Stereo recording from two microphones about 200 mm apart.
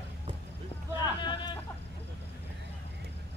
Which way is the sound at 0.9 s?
20° left (ahead or behind).